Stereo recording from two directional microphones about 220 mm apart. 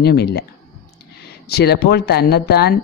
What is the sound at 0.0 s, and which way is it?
Speech, 45° left (ahead or behind).